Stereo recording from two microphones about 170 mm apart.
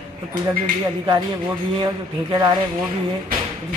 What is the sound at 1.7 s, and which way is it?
Speech, 25° right (ahead or behind).